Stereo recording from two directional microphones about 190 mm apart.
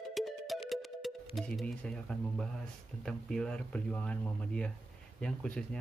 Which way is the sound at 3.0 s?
5° left (ahead or behind).